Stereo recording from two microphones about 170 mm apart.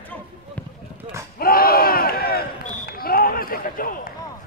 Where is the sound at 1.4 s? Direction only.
60° left (ahead or behind).